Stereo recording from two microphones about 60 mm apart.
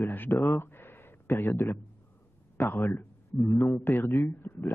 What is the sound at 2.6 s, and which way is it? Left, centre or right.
A man's voice, left.